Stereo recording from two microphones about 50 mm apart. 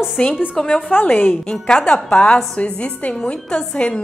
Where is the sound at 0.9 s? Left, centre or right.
Left.